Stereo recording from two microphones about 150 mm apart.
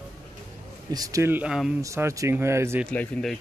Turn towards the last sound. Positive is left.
turn(degrees=5)  # may be behind; listen again after turning